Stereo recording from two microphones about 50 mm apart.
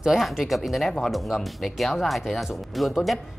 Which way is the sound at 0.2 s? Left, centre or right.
Centre.